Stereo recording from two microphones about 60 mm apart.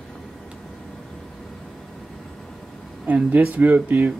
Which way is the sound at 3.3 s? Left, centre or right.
Right.